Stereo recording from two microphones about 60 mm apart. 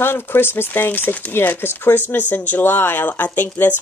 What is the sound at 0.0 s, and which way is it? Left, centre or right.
Speech, left.